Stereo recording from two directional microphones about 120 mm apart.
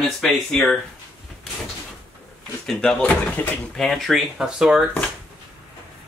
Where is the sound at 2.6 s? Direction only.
5° left (ahead or behind).